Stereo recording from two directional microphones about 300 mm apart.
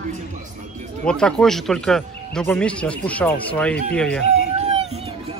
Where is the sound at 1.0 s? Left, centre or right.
Centre.